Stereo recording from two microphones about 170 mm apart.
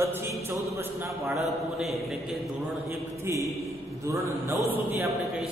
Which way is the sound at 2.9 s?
15° right (ahead or behind).